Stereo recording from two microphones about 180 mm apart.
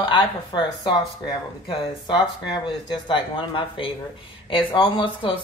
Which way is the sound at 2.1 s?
25° left (ahead or behind).